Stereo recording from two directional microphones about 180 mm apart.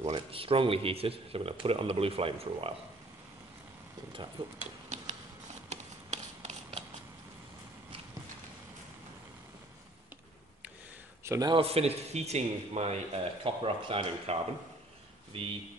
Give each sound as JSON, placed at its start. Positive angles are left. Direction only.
{"t": 0.0, "sound": "a man's voice", "side_deg": -30}
{"t": 4.6, "sound": "a sound", "side_deg": -40}
{"t": 11.2, "sound": "a man's voice", "side_deg": -20}